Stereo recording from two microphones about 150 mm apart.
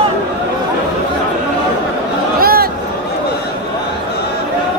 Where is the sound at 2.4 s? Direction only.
90° right.